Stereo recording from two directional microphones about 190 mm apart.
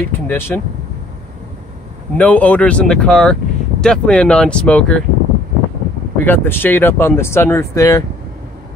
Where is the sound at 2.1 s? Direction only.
5° left (ahead or behind).